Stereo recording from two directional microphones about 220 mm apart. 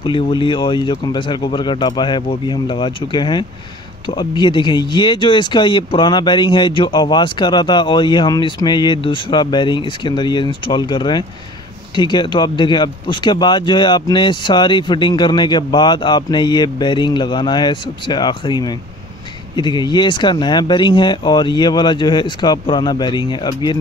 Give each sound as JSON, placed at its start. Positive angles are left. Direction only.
{"t": 0.0, "sound": "speech", "side_deg": 20}